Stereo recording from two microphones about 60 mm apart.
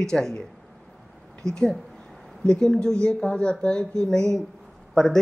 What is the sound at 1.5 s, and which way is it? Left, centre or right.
A man's voice, centre.